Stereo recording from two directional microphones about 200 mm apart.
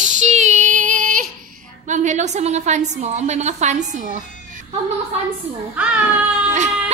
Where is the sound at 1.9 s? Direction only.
35° right (ahead or behind).